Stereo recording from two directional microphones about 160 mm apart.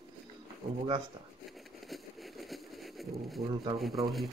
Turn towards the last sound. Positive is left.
turn(degrees=0)  # may be behind; listen again after turning